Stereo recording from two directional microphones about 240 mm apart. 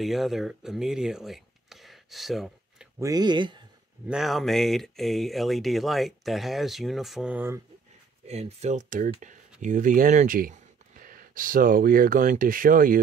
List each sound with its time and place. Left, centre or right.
0.0 s speech: centre
3.0 s speech: centre
4.1 s speech: centre
8.3 s speech: right